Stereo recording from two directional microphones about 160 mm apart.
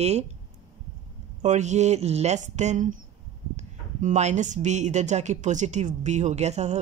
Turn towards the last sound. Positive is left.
turn(degrees=-45)  # may be behind; listen again after turning